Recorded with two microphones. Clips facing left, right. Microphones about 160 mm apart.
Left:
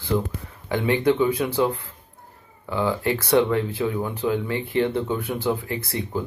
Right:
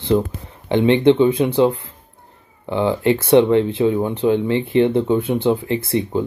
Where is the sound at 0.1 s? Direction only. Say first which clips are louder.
Right 6 dB; 30° right (ahead or behind).